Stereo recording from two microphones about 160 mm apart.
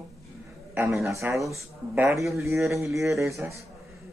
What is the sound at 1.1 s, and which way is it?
Speech, 20° right (ahead or behind).